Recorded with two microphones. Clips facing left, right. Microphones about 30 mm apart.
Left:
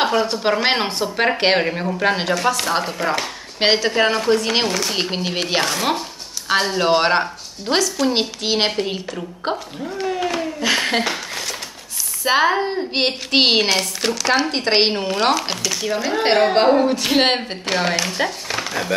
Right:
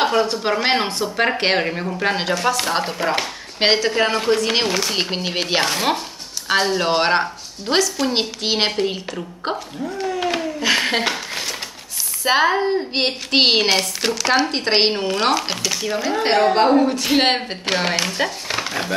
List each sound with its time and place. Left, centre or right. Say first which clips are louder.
0.0 s speech: even; centre
4.6 s speech: even; centre
9.9 s speech: left 2 dB; centre
10.6 s a sound: even; centre
12.3 s speech: even; centre
16.2 s a woman's voice: even; centre